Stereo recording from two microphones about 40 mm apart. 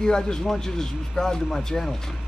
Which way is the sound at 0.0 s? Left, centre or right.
Centre.